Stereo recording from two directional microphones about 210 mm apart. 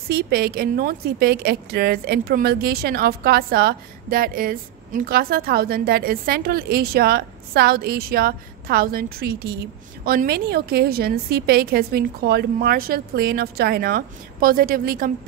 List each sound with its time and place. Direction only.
0.1 s a woman's voice: 50° right (ahead or behind)